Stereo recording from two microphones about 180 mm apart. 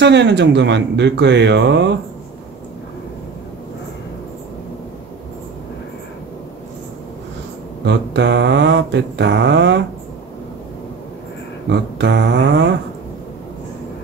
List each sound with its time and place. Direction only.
0.0 s mantra: 75° right (ahead or behind)
7.8 s mantra: 75° right (ahead or behind)
11.7 s mantra: 75° right (ahead or behind)